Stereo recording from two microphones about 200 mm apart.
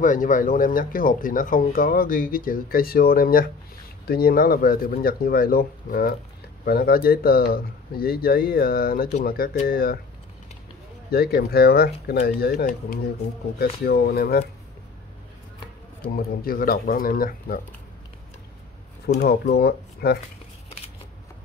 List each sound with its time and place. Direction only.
0.0 s speech: 40° left (ahead or behind)
11.1 s speech: 50° left (ahead or behind)
16.2 s speech: 45° left (ahead or behind)
19.2 s speech: 55° left (ahead or behind)